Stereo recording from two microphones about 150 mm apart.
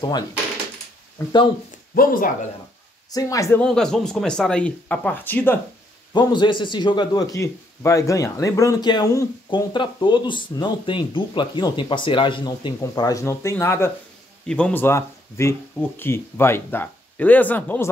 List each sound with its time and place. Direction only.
1.2 s a man's voice: 20° left (ahead or behind)
2.0 s speech: 70° left (ahead or behind)
3.1 s a man's voice: 25° left (ahead or behind)
3.6 s speech: 5° left (ahead or behind)
6.1 s a man's voice: 30° left (ahead or behind); by 17.8 s 10° left (ahead or behind)